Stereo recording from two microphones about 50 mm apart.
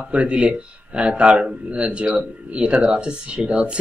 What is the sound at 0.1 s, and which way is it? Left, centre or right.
A man's voice, right.